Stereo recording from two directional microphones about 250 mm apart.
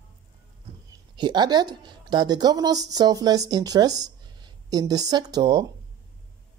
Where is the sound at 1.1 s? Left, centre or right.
Centre.